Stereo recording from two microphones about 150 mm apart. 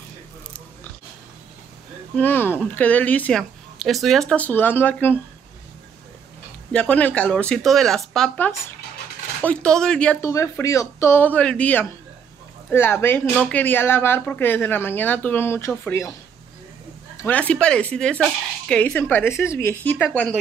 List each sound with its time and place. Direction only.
2.1 s speech: 15° left (ahead or behind)
6.7 s speech: 10° left (ahead or behind)
10.2 s speech: 20° left (ahead or behind)
17.3 s speech: 10° left (ahead or behind)